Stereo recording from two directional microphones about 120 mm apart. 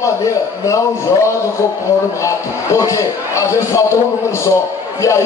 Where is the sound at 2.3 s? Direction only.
25° left (ahead or behind).